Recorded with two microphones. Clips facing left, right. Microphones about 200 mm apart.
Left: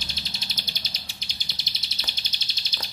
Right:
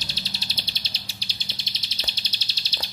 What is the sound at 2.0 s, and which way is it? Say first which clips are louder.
Bird: right 4 dB; 35° right (ahead or behind).